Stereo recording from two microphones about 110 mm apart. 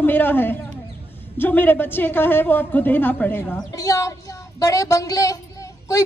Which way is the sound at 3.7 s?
30° left (ahead or behind).